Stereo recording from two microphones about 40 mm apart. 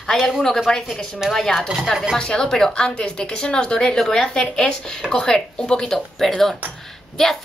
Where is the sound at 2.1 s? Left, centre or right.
Centre.